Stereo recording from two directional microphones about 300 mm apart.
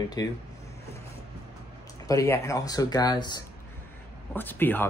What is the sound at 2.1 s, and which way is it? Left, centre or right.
Speech, centre.